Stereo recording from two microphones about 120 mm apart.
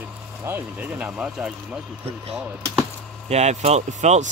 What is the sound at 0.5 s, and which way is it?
Speech, 15° right (ahead or behind).